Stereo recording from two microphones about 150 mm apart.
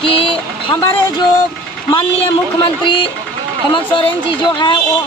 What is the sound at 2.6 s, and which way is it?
Speech, 35° left (ahead or behind).